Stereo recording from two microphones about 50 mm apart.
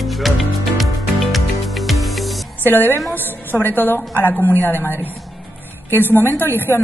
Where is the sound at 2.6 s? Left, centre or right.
Left.